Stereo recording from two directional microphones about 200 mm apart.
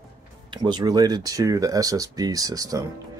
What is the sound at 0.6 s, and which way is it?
Speech, 20° right (ahead or behind).